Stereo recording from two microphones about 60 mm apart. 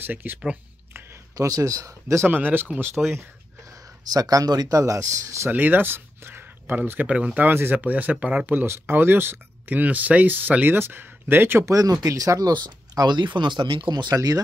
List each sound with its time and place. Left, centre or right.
0.0 s speech: right
1.3 s speech: right
2.1 s speech: right
3.0 s speech: centre
4.1 s speech: right
5.5 s speech: right
7.1 s speech: right
7.4 s speech: right
8.6 s speech: right
11.7 s speech: right